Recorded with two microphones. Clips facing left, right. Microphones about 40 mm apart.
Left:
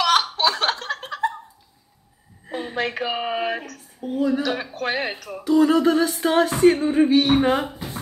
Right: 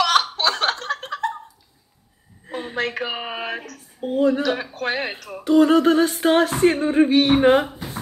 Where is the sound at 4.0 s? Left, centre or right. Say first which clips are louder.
Right 3 dB; right.